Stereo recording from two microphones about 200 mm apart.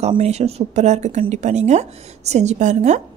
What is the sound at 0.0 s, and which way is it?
A woman's voice, 30° right (ahead or behind).